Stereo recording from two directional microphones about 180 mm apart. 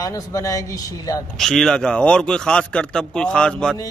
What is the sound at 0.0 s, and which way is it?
A man's voice, 20° left (ahead or behind).